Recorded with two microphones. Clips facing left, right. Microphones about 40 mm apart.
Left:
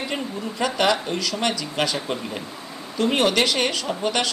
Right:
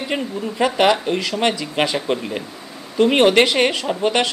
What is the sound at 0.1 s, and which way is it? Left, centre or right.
Speech, right.